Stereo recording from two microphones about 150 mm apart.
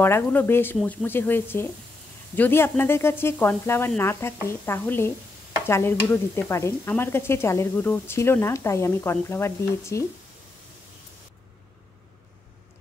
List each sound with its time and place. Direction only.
0.0 s speech: 15° left (ahead or behind)